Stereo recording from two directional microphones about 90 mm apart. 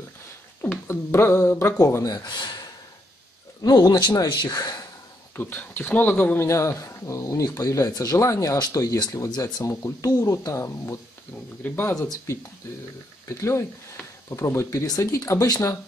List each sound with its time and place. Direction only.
0.6 s speech: 25° left (ahead or behind)
2.1 s speech: 55° left (ahead or behind)
5.3 s speech: 25° left (ahead or behind); by 9.3 s 40° left (ahead or behind)
9.3 s speech: 50° left (ahead or behind)
9.7 s speech: 35° left (ahead or behind)
13.3 s speech: 30° left (ahead or behind)